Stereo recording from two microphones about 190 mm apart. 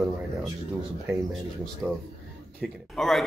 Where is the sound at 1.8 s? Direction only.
10° right (ahead or behind).